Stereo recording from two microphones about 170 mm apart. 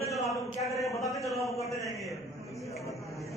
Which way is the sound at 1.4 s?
20° left (ahead or behind).